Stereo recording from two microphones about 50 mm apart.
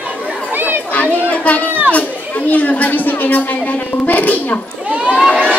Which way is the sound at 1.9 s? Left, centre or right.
Left.